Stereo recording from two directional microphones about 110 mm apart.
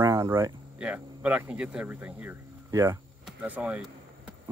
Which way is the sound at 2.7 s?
25° right (ahead or behind).